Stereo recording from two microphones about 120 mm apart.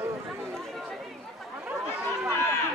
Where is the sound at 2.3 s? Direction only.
20° left (ahead or behind).